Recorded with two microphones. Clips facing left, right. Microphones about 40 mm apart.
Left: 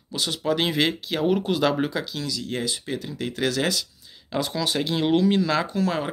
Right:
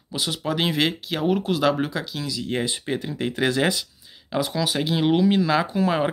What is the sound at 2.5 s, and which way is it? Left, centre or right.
Speech, right.